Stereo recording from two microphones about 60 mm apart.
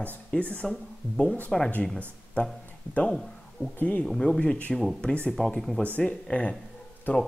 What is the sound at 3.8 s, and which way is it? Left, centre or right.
Speech, left.